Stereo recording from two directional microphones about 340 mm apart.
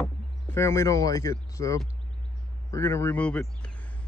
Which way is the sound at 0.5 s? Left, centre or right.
Centre.